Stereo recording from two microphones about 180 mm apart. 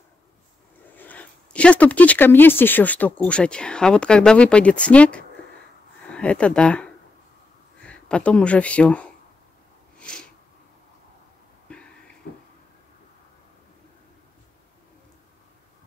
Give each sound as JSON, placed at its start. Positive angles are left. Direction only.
{"t": 0.9, "sound": "speech", "side_deg": 10}
{"t": 9.9, "sound": "sneeze", "side_deg": 5}
{"t": 11.7, "sound": "a sound", "side_deg": 5}